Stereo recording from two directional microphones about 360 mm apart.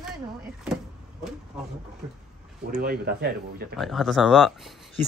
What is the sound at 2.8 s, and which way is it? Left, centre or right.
Speech, right.